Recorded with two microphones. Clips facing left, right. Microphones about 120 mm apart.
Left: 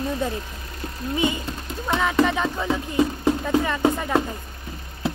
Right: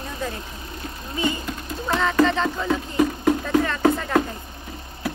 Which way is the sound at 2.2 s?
15° left (ahead or behind).